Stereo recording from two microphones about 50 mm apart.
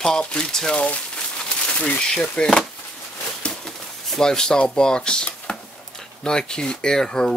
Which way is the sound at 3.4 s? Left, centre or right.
Centre.